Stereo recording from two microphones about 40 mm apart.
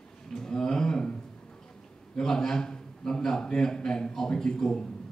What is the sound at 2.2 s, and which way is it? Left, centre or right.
A man's voice, centre.